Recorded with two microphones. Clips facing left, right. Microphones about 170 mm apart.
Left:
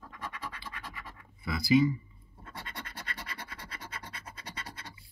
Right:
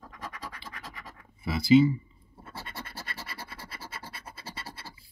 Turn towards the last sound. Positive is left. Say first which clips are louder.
# right 2 dB
turn(degrees=-30)  # may be behind; listen again after turning